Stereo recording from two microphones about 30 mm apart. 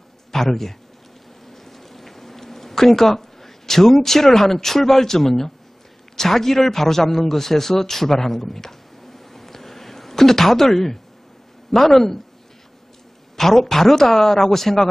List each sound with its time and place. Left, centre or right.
0.3 s a man's voice: centre
1.5 s a sound: centre
6.1 s a man's voice: centre
13.4 s speech: centre